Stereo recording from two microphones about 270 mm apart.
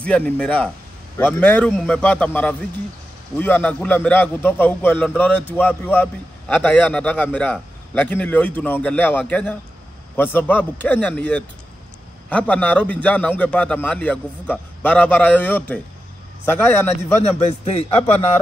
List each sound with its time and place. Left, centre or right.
0.0 s a man's voice: centre
17.5 s a man's voice: left